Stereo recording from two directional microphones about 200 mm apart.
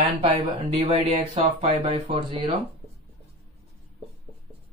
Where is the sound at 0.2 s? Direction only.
25° right (ahead or behind).